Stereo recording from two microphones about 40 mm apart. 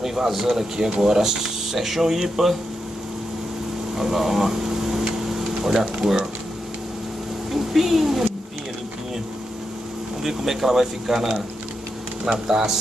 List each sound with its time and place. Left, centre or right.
0.0 s speech: centre
3.9 s a sound: centre
5.8 s speech: centre
7.5 s speech: centre
10.2 s speech: centre